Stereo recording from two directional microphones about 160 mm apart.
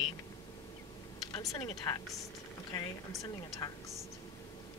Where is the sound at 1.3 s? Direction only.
25° left (ahead or behind).